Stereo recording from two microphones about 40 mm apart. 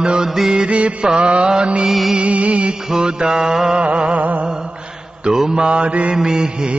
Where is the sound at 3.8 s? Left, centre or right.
Right.